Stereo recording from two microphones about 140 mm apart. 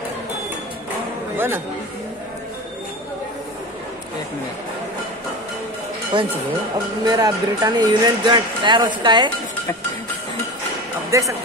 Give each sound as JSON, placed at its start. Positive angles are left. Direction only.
{"t": 1.3, "sound": "a man's voice", "side_deg": -15}
{"t": 6.1, "sound": "speech", "side_deg": -35}
{"t": 11.1, "sound": "speech", "side_deg": -20}